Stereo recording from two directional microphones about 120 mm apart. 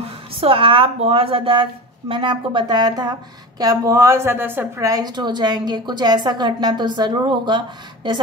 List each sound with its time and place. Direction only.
0.0 s speech: 50° right (ahead or behind); by 4.8 s 15° right (ahead or behind)
4.8 s speech: 35° right (ahead or behind)